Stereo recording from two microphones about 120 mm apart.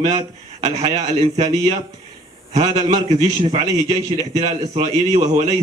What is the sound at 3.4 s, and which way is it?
Speech, 45° right (ahead or behind).